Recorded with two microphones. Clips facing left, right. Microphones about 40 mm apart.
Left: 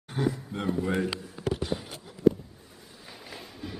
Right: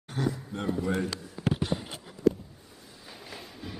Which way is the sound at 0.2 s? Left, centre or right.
Left.